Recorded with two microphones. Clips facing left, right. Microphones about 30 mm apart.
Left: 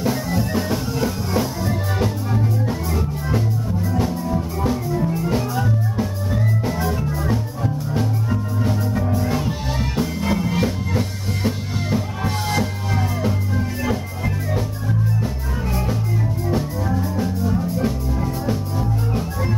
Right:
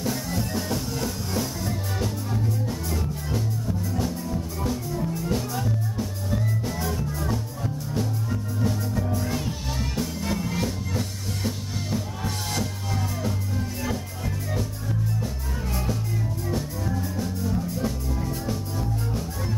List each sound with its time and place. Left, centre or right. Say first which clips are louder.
0.5 s music: left 6 dB; left
16.4 s music: left 7 dB; left